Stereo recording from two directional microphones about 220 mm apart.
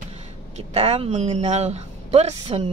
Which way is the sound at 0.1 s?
30° right (ahead or behind).